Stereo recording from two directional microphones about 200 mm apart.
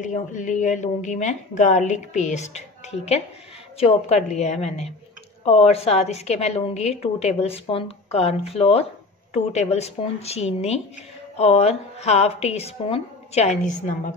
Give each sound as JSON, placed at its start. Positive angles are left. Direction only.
{"t": 0.0, "sound": "a woman's voice", "side_deg": 40}